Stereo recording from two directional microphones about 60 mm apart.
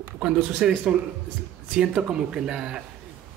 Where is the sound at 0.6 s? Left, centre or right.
Centre.